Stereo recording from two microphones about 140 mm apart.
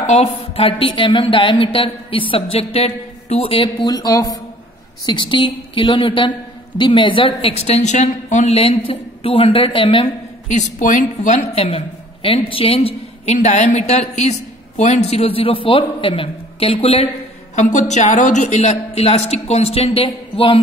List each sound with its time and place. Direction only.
0.0 s a woman's voice: 55° left (ahead or behind)
10.5 s a woman's voice: 60° left (ahead or behind); by 17.1 s 45° left (ahead or behind)
17.6 s a woman's voice: 60° left (ahead or behind); by 20.5 s 40° left (ahead or behind)